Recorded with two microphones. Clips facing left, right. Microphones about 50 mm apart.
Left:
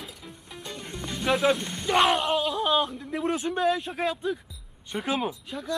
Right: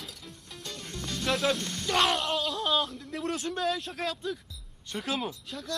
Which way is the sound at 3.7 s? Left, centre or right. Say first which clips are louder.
Left 5 dB; centre.